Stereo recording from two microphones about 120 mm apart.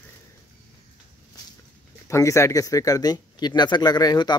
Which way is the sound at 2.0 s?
25° left (ahead or behind).